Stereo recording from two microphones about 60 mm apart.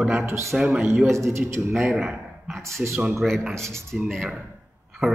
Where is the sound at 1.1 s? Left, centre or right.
Right.